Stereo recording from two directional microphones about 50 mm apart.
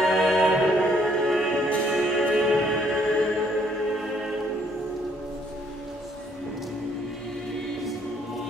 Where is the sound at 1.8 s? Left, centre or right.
Centre.